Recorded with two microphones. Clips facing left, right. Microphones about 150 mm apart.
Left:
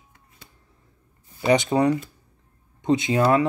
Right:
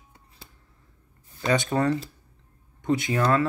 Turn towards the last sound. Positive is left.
turn(degrees=20)  # may be behind; listen again after turning